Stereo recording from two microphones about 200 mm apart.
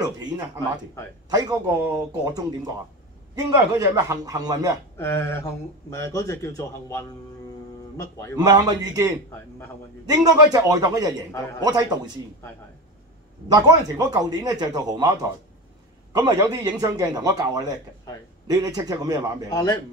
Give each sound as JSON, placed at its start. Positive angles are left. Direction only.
{"t": 1.3, "sound": "a man's voice", "side_deg": -20}
{"t": 4.9, "sound": "speech", "side_deg": 10}
{"t": 8.4, "sound": "a man's voice", "side_deg": -20}
{"t": 13.5, "sound": "a man's voice", "side_deg": -20}
{"t": 19.5, "sound": "speech", "side_deg": 15}